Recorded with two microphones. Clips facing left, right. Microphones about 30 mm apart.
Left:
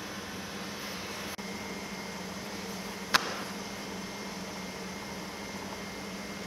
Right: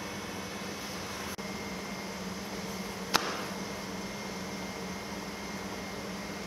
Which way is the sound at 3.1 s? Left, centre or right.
Left.